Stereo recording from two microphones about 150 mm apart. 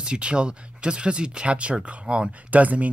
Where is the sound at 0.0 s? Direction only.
5° right (ahead or behind).